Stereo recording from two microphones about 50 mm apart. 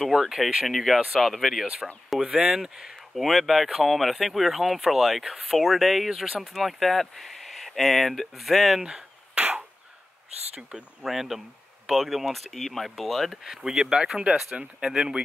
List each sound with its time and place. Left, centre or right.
0.2 s speech: centre
2.2 s speech: centre
3.2 s speech: centre
8.8 s a sound: centre
11.0 s speech: centre
13.3 s speech: centre